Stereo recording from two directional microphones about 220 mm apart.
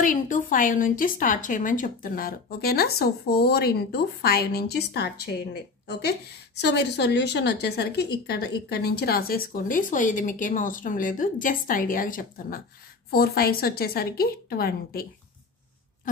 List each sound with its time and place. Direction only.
0.0 s a woman's voice: 35° left (ahead or behind)